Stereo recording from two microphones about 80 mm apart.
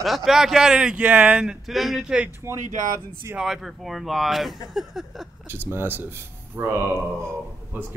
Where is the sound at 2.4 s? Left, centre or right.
Right.